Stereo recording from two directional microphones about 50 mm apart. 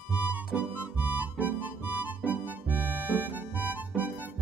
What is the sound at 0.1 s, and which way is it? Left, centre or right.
Music, right.